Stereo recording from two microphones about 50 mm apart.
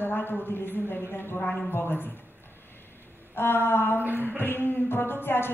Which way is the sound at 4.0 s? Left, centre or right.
Right.